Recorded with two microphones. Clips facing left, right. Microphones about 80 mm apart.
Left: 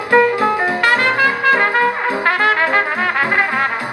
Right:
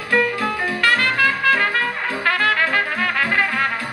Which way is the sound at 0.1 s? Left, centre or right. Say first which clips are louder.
Left 7 dB; left.